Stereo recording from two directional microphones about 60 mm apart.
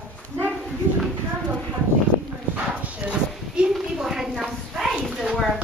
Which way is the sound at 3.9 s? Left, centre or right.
Centre.